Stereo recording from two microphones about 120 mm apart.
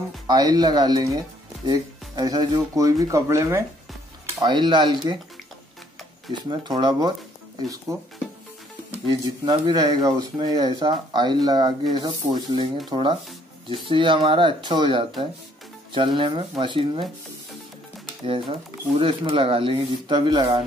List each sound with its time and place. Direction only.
0.3 s speech: 35° right (ahead or behind)
4.4 s speech: 40° right (ahead or behind)
6.3 s speech: 40° right (ahead or behind)
9.5 s speech: 35° right (ahead or behind)
18.2 s speech: 45° right (ahead or behind)